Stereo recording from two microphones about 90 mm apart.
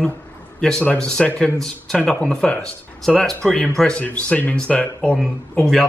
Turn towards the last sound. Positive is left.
turn(degrees=5)  # may be behind; listen again after turning